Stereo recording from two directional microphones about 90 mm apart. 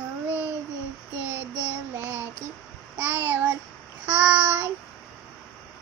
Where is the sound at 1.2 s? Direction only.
15° right (ahead or behind).